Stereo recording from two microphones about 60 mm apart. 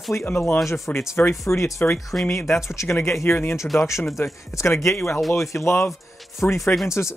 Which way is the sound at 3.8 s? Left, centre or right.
Left.